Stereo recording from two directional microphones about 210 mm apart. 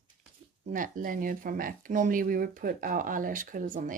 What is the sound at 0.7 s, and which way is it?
Speech, 40° right (ahead or behind).